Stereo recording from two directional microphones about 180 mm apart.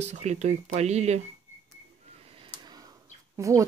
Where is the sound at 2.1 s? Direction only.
30° right (ahead or behind).